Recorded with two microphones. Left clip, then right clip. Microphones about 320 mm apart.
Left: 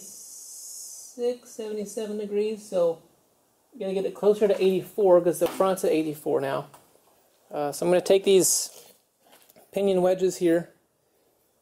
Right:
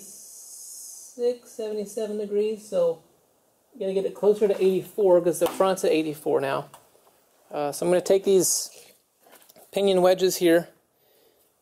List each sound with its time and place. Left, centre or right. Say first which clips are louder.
1.1 s speech: right 2 dB; centre
8.4 s speech: left 1 dB; centre
9.3 s speech: right 2 dB; centre